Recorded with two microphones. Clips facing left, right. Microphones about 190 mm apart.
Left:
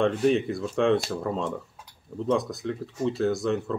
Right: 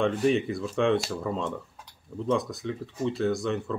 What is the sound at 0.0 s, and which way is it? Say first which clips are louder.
Speech: left 2 dB; centre (ahead or behind).